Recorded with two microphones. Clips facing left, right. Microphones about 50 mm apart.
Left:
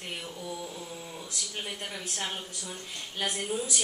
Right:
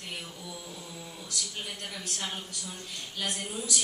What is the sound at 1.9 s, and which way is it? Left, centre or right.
A woman's voice, centre.